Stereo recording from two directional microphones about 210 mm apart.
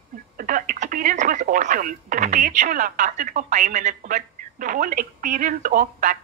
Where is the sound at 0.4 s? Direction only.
40° right (ahead or behind).